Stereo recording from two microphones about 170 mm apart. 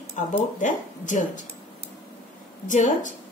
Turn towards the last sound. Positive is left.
turn(degrees=45)  # may be behind; listen again after turning